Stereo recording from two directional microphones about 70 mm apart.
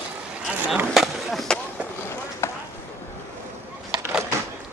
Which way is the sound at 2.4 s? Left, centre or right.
Left.